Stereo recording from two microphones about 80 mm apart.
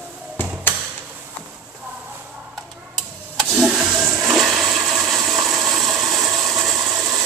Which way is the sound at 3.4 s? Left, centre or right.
Centre.